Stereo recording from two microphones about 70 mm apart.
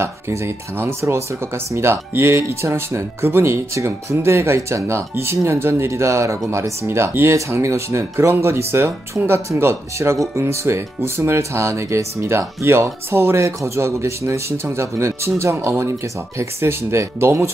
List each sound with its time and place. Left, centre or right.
0.0 s speech: right